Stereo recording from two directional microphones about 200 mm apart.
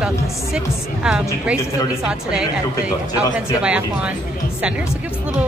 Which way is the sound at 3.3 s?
5° right (ahead or behind).